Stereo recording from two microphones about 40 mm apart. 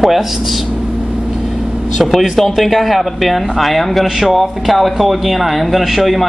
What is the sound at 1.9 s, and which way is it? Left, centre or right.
Speech, centre.